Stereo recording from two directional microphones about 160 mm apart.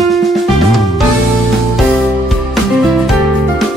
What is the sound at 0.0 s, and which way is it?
Music, centre (ahead or behind).